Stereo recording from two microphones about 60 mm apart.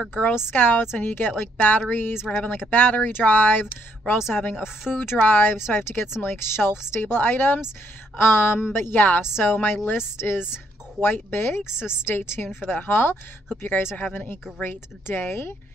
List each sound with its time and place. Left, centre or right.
0.1 s speech: left